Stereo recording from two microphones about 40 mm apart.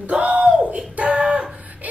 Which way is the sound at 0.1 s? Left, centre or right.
Right.